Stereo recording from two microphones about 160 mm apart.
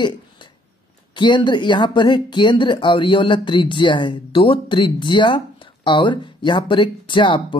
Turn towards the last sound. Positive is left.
turn(degrees=30)  # may be behind; listen again after turning